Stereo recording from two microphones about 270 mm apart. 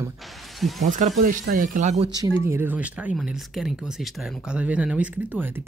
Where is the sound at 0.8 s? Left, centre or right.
Right.